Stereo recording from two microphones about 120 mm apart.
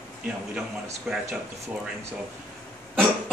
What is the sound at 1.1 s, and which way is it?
Speech, 5° right (ahead or behind).